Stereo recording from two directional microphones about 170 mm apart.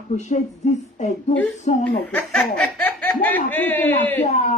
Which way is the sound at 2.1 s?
5° left (ahead or behind).